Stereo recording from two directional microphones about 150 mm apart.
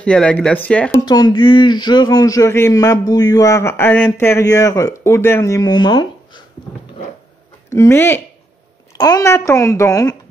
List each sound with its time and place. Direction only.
0.0 s speech: 5° left (ahead or behind)
1.0 s speech: 30° left (ahead or behind)
7.7 s speech: 15° left (ahead or behind)